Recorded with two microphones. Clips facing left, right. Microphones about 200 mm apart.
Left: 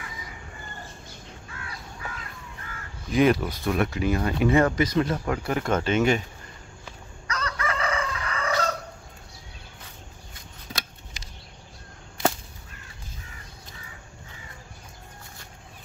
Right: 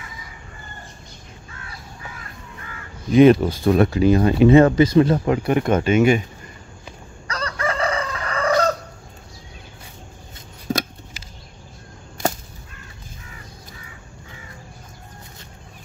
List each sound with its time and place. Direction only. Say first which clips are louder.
3.1 s speech: right 9 dB; 25° right (ahead or behind)
7.2 s chicken: right 5 dB; 35° right (ahead or behind)
10.7 s a sound: right 14 dB; 45° right (ahead or behind)
12.2 s whip: right 1 dB; 45° right (ahead or behind)